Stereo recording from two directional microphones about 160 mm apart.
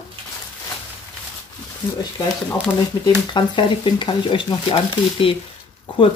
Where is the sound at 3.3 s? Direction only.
30° left (ahead or behind).